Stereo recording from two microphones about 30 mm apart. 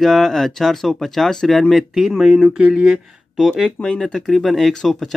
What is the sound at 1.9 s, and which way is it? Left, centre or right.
Speech, centre.